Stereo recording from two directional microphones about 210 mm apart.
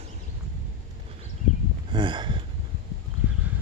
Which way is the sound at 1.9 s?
20° right (ahead or behind).